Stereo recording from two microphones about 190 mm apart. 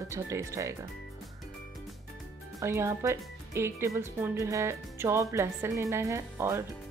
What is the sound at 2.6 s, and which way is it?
Speech, 15° right (ahead or behind).